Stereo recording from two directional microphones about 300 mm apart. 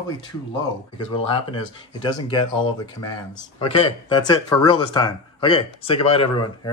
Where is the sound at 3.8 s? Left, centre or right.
Centre.